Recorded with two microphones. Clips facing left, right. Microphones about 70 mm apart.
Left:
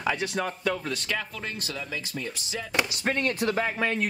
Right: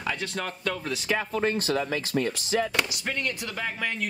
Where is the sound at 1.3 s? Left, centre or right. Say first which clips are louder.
Right 10 dB; right.